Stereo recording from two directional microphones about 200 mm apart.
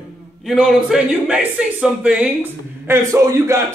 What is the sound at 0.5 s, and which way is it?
Speech, centre (ahead or behind).